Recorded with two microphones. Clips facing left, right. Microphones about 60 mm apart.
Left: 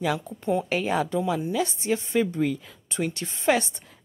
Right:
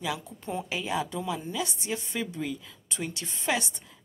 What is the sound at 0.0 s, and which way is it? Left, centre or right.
A woman's voice, left.